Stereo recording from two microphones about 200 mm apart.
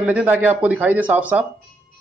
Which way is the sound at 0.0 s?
5° right (ahead or behind).